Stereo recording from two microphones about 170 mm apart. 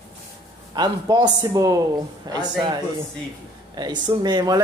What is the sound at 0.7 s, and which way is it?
Speech, 25° right (ahead or behind).